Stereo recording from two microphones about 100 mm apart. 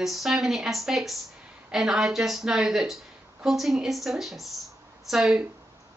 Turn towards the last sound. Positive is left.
turn(degrees=-5)  # may be behind; listen again after turning